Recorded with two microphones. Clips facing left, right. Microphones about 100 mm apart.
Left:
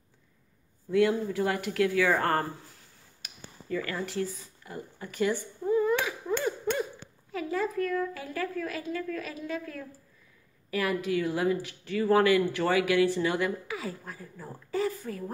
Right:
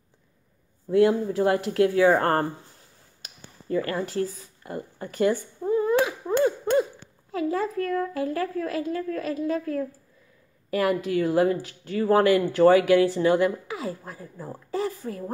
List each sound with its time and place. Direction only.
0.8 s speech: 35° right (ahead or behind)
3.6 s a sound: 35° right (ahead or behind)
7.2 s speech: 35° right (ahead or behind)
10.9 s speech: 40° right (ahead or behind)